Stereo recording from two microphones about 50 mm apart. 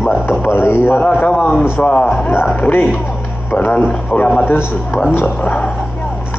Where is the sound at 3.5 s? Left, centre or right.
Left.